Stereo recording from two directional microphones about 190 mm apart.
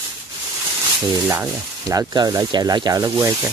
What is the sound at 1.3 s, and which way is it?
Speech, 15° right (ahead or behind).